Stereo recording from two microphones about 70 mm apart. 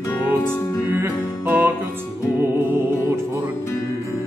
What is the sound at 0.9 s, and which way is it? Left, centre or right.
Music, right.